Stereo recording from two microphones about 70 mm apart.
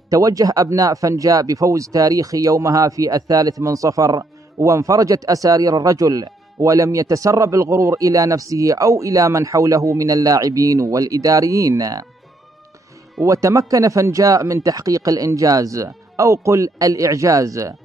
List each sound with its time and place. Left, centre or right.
0.1 s speech: right
13.2 s speech: right